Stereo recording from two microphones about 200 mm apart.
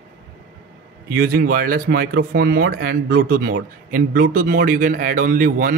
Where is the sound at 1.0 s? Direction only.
45° right (ahead or behind).